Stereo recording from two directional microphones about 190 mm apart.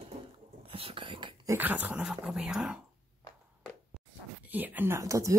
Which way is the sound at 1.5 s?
10° right (ahead or behind).